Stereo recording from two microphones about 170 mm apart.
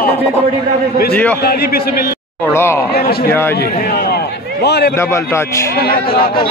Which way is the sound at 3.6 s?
65° left (ahead or behind).